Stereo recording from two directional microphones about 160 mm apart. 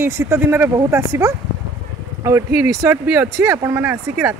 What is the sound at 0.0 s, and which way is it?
Speech, 15° right (ahead or behind).